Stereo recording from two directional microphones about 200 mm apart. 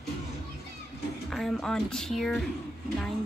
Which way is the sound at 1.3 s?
Centre (ahead or behind).